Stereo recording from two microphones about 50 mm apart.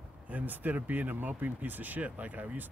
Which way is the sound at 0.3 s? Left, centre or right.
Right.